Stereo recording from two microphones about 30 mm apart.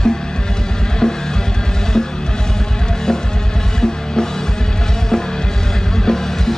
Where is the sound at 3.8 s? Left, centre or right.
Left.